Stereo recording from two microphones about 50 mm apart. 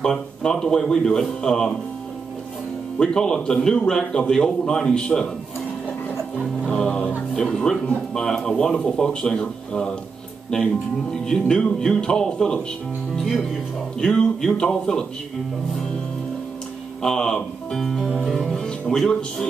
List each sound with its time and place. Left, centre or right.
0.0 s speech: centre
3.0 s speech: centre
6.4 s music: centre
6.8 s music: centre
7.3 s speech: centre
13.9 s speech: centre
17.0 s speech: centre